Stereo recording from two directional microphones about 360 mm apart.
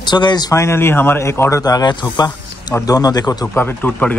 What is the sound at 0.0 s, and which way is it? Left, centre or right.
Speech, centre.